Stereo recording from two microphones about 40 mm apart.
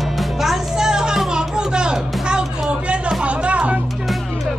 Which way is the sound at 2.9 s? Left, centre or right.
Centre.